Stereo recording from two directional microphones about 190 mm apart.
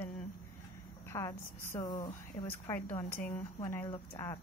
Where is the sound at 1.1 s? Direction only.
15° left (ahead or behind).